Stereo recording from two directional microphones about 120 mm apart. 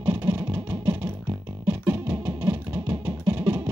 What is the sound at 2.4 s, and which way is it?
Music, 15° right (ahead or behind).